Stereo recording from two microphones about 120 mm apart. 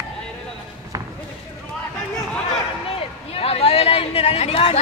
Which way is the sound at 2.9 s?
55° left (ahead or behind).